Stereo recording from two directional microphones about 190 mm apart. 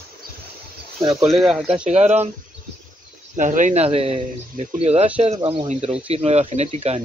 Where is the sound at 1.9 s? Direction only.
35° right (ahead or behind).